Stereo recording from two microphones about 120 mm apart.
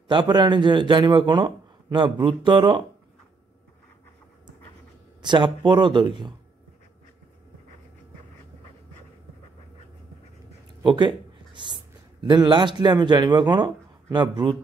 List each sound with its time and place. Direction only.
0.1 s speech: 40° right (ahead or behind)
5.2 s speech: 40° right (ahead or behind)
10.8 s speech: 40° right (ahead or behind)